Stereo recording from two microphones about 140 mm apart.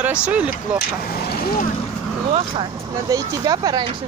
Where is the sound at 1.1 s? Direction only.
90° left.